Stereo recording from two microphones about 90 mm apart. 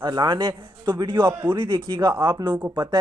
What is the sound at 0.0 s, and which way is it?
Speech, 55° right (ahead or behind).